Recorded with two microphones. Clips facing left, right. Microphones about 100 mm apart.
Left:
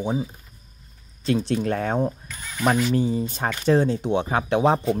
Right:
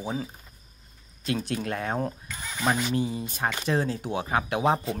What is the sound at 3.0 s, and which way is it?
Speech, 30° left (ahead or behind).